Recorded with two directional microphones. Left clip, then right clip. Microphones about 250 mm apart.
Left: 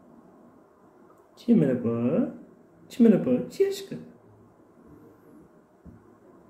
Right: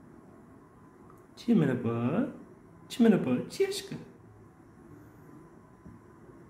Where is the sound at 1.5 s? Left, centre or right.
Centre.